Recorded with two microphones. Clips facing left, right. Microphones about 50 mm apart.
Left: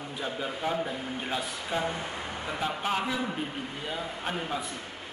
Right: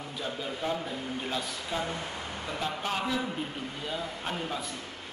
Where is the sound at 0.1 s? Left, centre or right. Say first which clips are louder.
Left 2 dB; centre.